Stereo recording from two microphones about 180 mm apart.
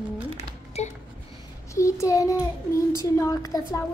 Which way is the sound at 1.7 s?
15° left (ahead or behind).